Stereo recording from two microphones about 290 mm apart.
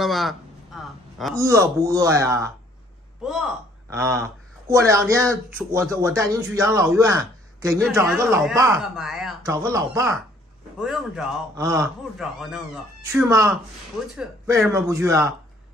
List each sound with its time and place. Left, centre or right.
0.0 s a sound: centre
1.3 s speech: centre
3.9 s speech: centre